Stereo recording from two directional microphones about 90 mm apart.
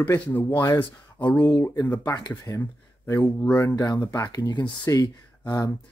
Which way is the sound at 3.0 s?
30° left (ahead or behind).